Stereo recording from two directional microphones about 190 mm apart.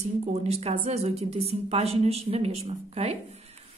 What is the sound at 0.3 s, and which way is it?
A woman's voice, 35° right (ahead or behind).